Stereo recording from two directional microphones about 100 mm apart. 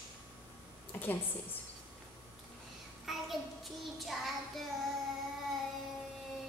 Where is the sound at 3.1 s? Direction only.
Centre (ahead or behind).